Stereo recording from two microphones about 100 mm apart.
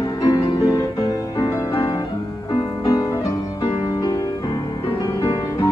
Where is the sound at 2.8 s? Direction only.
40° left (ahead or behind).